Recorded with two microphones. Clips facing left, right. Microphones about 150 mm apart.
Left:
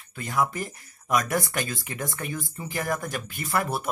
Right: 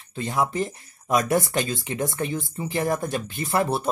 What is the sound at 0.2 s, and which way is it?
Speech, 25° right (ahead or behind).